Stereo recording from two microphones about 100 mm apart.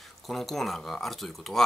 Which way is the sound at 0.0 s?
Centre (ahead or behind).